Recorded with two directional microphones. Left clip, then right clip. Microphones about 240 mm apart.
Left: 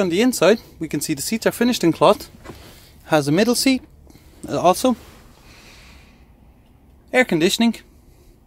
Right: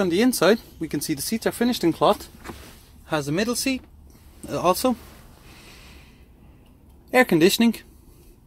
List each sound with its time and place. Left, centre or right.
0.0 s speech: centre
3.1 s speech: left
4.5 s speech: centre
7.1 s speech: centre